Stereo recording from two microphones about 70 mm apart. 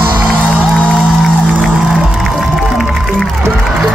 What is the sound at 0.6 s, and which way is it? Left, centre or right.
Music, centre.